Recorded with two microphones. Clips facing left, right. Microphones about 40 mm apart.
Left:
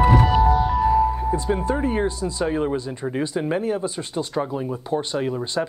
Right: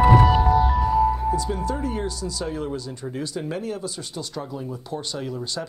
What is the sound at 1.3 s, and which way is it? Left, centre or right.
Speech, left.